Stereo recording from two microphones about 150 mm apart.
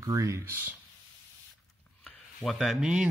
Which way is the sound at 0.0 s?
20° right (ahead or behind).